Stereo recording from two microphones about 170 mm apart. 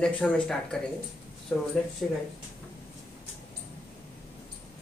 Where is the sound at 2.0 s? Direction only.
Centre (ahead or behind).